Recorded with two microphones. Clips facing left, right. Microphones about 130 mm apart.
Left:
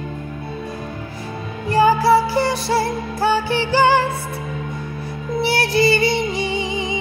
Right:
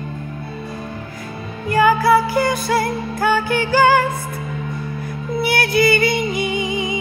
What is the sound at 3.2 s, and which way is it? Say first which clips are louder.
Music: even; 50° right (ahead or behind).